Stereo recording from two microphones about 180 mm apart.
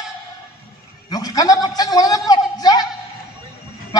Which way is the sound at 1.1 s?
20° left (ahead or behind).